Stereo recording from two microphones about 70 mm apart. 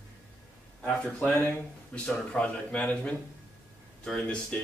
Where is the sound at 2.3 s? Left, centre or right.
Centre.